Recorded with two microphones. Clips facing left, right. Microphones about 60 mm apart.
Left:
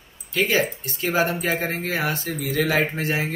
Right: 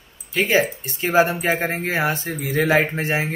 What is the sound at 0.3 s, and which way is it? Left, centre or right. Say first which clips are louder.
Speech: right 2 dB; right.